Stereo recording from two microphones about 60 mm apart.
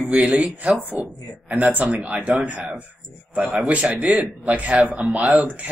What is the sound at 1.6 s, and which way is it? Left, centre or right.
Speech, right.